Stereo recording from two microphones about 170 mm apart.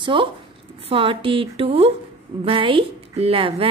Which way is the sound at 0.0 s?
30° right (ahead or behind).